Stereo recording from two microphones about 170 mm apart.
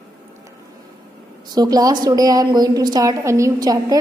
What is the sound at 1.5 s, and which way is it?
A woman's voice, 25° right (ahead or behind).